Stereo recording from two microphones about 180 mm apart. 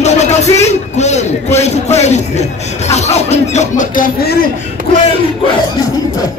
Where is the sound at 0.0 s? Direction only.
40° left (ahead or behind); by 4.4 s 55° left (ahead or behind).